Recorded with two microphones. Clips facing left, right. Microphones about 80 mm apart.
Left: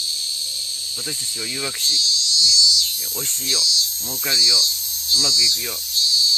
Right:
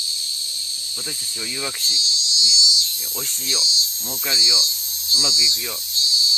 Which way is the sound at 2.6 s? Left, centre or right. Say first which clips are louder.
Even; right.